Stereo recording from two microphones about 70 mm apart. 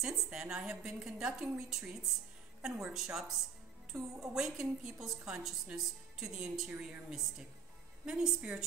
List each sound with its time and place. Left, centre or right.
0.0 s a woman's voice: centre